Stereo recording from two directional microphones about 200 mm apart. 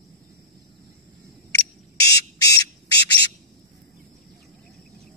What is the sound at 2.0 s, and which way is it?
Squawk, 55° left (ahead or behind).